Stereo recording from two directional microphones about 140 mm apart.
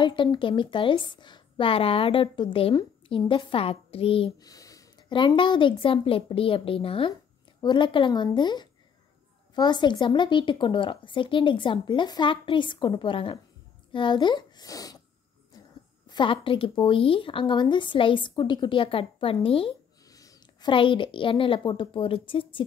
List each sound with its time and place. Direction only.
0.0 s a woman's voice: 35° left (ahead or behind)
4.4 s a sound: 25° left (ahead or behind)
5.1 s a woman's voice: 35° left (ahead or behind)
16.1 s a woman's voice: 35° left (ahead or behind)
20.1 s a sound: 25° left (ahead or behind)
20.7 s a woman's voice: 35° left (ahead or behind)